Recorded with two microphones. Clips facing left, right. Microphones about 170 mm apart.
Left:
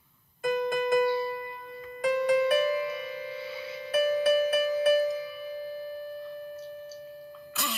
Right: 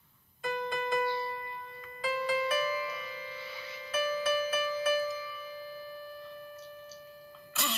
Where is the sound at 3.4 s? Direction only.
30° left (ahead or behind).